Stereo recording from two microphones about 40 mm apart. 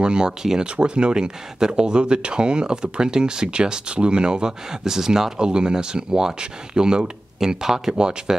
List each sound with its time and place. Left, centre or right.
0.0 s speech: right